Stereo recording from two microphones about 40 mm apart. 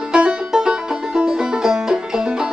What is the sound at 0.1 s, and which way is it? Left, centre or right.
Music, centre.